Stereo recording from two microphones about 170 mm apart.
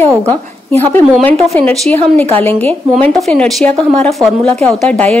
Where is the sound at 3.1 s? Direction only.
5° left (ahead or behind).